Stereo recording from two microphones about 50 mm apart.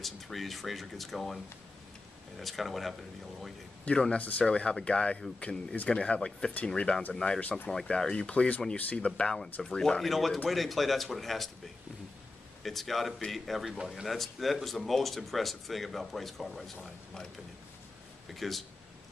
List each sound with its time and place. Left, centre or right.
0.0 s speech: centre
3.9 s speech: left
7.3 s speech: left
7.7 s speech: centre
12.6 s speech: centre
18.3 s speech: centre